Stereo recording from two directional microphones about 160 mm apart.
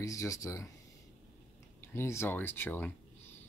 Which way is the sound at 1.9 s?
15° left (ahead or behind).